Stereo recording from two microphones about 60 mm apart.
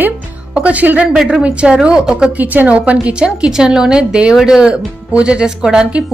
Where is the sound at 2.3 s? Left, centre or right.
Right.